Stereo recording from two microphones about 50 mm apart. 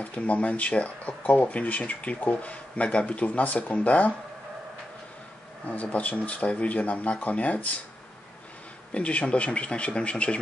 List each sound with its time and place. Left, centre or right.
0.0 s speech: left
5.7 s speech: left
8.9 s speech: left